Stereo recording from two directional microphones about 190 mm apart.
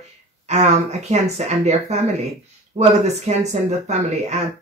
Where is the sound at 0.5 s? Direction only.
35° right (ahead or behind).